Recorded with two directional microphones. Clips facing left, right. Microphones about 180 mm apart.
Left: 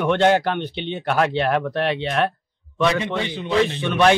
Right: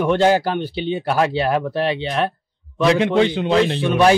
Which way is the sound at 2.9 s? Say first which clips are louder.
Right 8 dB; 85° right.